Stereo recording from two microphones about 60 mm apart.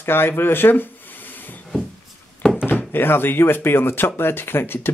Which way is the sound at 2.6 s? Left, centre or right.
Left.